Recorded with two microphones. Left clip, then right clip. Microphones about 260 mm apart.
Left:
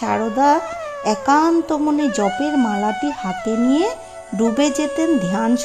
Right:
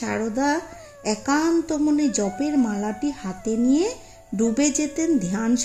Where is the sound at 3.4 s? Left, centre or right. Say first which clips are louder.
Left 3 dB; left.